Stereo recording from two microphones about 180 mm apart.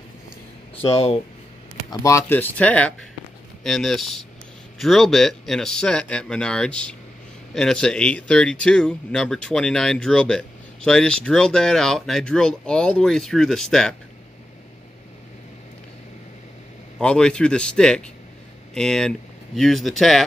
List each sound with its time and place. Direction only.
0.7 s speech: 35° left (ahead or behind)
1.9 s speech: 15° left (ahead or behind)
17.0 s speech: 5° left (ahead or behind)